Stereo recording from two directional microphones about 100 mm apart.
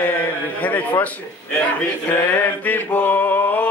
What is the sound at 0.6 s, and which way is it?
Speech, 15° left (ahead or behind).